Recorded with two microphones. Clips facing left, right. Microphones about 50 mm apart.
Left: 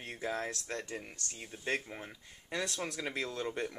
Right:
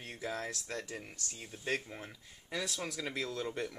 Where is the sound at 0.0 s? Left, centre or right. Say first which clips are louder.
Left 2 dB; centre.